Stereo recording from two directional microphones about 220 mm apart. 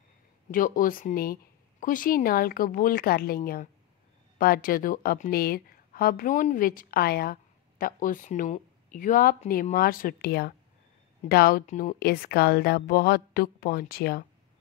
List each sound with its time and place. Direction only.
0.5 s a woman's voice: 40° left (ahead or behind)